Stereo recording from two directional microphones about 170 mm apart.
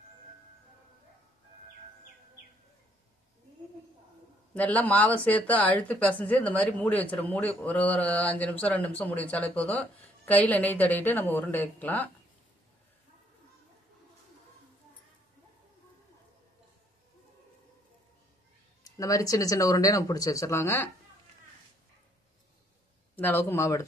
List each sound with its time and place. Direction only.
4.6 s speech: 10° left (ahead or behind)
18.9 s speech: 20° left (ahead or behind)
23.1 s speech: 10° left (ahead or behind)